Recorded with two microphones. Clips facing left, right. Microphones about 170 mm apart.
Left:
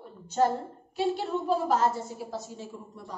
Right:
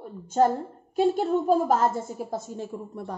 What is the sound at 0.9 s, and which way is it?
A woman's voice, 45° right (ahead or behind).